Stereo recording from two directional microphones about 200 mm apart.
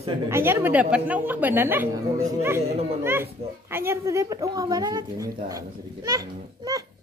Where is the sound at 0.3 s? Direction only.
10° right (ahead or behind).